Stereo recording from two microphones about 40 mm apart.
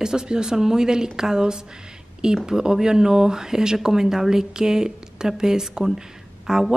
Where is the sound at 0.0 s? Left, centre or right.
Centre.